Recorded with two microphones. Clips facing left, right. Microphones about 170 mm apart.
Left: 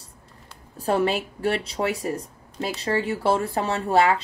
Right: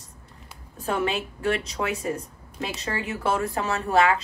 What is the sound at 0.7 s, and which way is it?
Speech, 35° left (ahead or behind).